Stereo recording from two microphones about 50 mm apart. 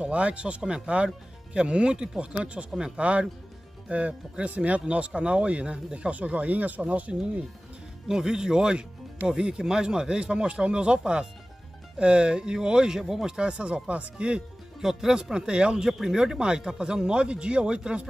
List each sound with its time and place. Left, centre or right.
0.0 s speech: right
8.1 s speech: centre
14.8 s speech: centre